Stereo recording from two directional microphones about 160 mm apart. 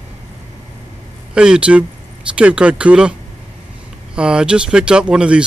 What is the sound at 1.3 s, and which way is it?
Speech, 5° right (ahead or behind).